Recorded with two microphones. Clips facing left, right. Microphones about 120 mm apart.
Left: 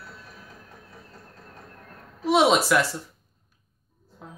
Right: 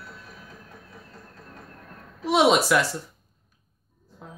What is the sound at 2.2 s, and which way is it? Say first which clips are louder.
Speech: even; centre (ahead or behind).